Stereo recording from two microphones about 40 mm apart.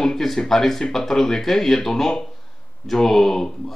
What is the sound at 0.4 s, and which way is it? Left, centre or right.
Speech, centre.